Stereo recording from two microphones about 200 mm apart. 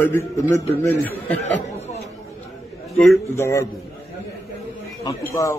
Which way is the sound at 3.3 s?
15° left (ahead or behind).